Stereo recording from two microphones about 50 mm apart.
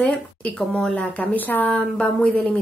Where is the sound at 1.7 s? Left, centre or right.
Left.